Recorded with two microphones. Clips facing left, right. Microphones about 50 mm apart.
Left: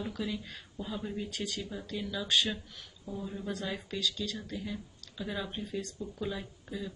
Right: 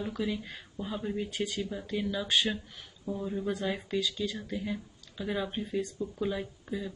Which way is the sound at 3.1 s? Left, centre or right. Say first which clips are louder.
Right 5 dB; centre.